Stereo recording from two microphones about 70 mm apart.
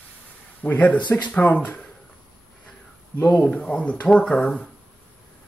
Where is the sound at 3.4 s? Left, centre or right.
Centre.